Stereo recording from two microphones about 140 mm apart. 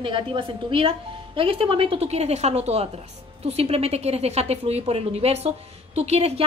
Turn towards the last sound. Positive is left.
turn(degrees=-50)  # may be behind; listen again after turning